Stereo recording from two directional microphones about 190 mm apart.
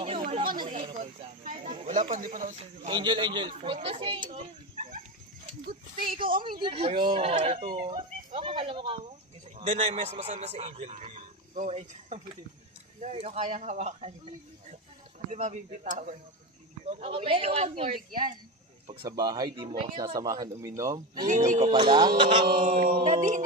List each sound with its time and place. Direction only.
0.0 s chatter: 30° right (ahead or behind)
0.6 s speech: 25° right (ahead or behind)
1.4 s speech: 40° right (ahead or behind)
2.5 s speech: 30° right (ahead or behind)
5.7 s mantra: 50° right (ahead or behind)
6.6 s a man's voice: 30° right (ahead or behind)
18.9 s speech: 20° right (ahead or behind)
21.3 s speech: 40° right (ahead or behind)
21.7 s speech: 25° right (ahead or behind)
22.6 s mantra: 50° right (ahead or behind)